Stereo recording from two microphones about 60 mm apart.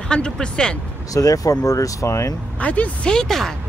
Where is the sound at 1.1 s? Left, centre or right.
Left.